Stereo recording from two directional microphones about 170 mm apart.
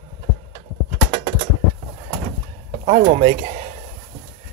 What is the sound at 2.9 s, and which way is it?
Speech, 45° right (ahead or behind).